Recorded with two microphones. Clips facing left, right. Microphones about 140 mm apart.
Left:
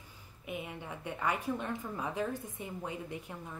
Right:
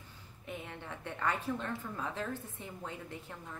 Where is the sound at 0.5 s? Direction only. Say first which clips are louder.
Left 3 dB; 10° left (ahead or behind).